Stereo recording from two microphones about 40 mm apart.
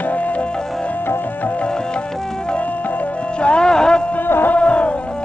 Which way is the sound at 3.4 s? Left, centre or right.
Left.